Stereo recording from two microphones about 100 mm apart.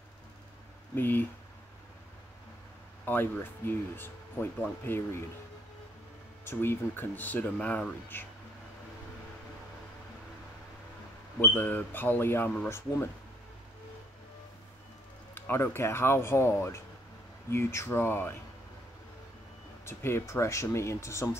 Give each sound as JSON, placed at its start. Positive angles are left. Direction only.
{"t": 0.9, "sound": "speech", "side_deg": 20}
{"t": 3.1, "sound": "speech", "side_deg": 20}
{"t": 6.4, "sound": "speech", "side_deg": 25}
{"t": 11.4, "sound": "speech", "side_deg": 15}
{"t": 15.3, "sound": "speech", "side_deg": 25}
{"t": 19.8, "sound": "speech", "side_deg": 25}